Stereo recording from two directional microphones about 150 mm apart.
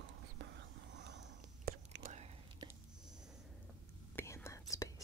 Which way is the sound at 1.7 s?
90° right.